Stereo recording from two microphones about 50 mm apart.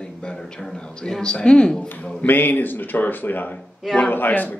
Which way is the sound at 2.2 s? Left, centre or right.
Left.